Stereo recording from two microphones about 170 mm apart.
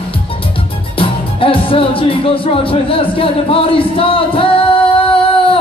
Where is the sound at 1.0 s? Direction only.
30° left (ahead or behind).